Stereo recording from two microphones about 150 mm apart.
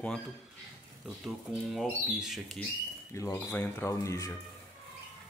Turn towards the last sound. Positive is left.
turn(degrees=20)  # may be behind; listen again after turning